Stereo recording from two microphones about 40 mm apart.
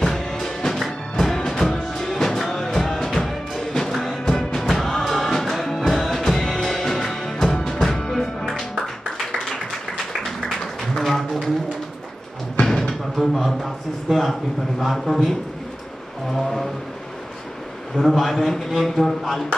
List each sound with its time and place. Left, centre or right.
0.0 s music: centre
11.0 s a sound: centre
12.6 s a sound: centre
14.8 s a man's voice: centre
16.3 s music: centre
17.9 s a man's voice: centre